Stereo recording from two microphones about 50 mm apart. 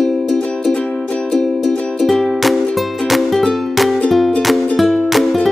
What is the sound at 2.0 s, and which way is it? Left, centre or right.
Music, centre.